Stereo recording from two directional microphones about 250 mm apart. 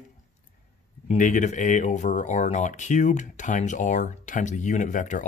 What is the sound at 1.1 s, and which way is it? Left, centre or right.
Speech, left.